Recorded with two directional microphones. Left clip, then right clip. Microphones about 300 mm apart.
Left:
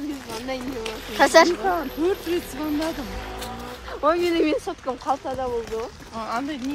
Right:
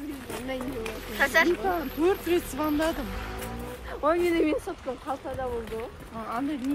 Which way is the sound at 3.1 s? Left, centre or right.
Left.